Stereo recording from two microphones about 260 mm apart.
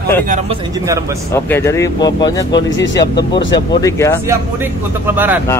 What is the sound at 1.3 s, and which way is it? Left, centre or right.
Speech, centre.